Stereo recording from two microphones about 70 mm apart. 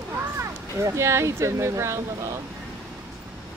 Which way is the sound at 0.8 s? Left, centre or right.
Right.